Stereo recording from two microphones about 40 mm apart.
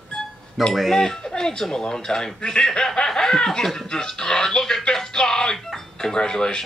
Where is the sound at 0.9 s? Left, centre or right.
Centre.